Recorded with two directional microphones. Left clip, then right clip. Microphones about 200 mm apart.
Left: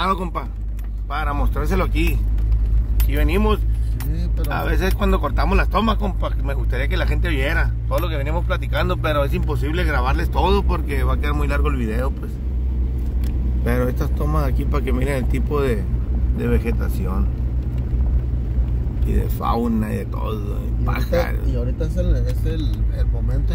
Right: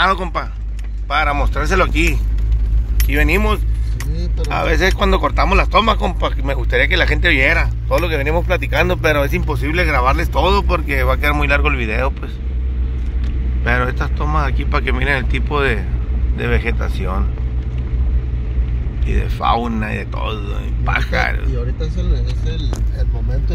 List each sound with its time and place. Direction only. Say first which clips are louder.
0.0 s speech: right 6 dB; 5° left (ahead or behind)
1.1 s speech: right 8 dB; 15° right (ahead or behind)
5.9 s speech: right 7 dB; 20° right (ahead or behind)
13.7 s speech: right 5 dB; 5° left (ahead or behind)
19.0 s speech: right 6 dB; 10° left (ahead or behind)